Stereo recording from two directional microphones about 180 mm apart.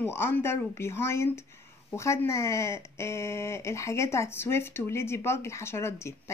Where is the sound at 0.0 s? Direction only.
15° left (ahead or behind).